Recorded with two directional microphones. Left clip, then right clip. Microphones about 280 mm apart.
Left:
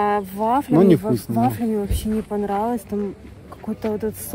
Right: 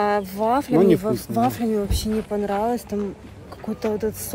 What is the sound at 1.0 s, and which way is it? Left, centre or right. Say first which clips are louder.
Speech: even; centre.